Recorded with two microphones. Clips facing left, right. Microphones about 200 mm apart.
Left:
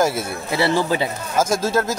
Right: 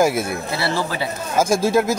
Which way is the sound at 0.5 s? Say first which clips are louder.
Left 4 dB; 15° left (ahead or behind).